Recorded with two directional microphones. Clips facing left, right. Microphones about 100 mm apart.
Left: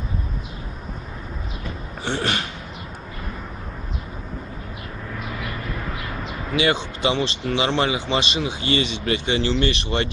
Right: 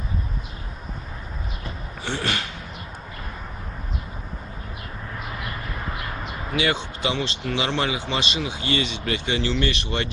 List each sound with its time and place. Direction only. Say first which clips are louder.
2.0 s speech: left 3 dB; 25° left (ahead or behind)
6.5 s speech: left 3 dB; 25° left (ahead or behind)